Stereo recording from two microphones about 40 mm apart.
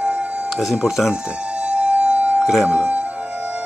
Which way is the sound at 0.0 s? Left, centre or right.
Right.